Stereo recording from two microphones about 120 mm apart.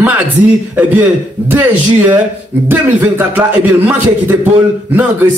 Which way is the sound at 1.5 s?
15° right (ahead or behind).